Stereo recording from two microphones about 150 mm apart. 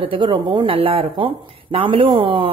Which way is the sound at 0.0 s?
35° right (ahead or behind).